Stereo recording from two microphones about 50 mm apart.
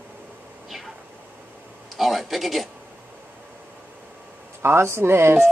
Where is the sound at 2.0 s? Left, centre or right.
Centre.